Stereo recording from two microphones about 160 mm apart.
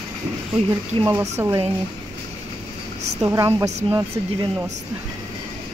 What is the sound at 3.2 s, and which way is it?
Speech, 20° right (ahead or behind).